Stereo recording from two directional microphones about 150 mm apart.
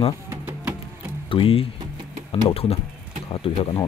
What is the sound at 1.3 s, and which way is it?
Speech, 40° left (ahead or behind).